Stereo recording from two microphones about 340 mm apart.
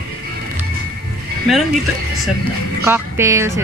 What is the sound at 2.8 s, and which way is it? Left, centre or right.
Speech, centre.